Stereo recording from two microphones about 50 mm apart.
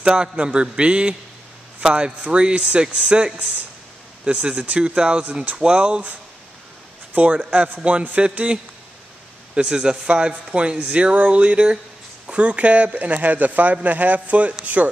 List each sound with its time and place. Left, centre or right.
0.0 s speech: centre
7.2 s speech: right
9.6 s speech: centre